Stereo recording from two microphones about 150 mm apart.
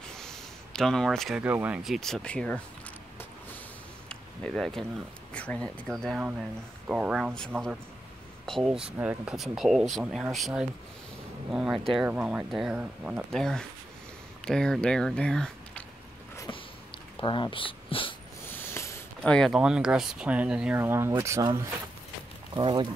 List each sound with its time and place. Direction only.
0.0 s a sound: 5° left (ahead or behind)
1.4 s speech: 10° right (ahead or behind); by 2.6 s 5° left (ahead or behind)
4.1 s a sound: 5° left (ahead or behind)
5.3 s speech: 10° left (ahead or behind)
6.9 s speech: 5° right (ahead or behind)
13.3 s speech: 5° left (ahead or behind)
17.2 s speech: 35° left (ahead or behind)
18.4 s mechanisms: 15° left (ahead or behind)
19.2 s speech: 5° left (ahead or behind); by 21.5 s 20° right (ahead or behind)
22.5 s speech: 30° right (ahead or behind)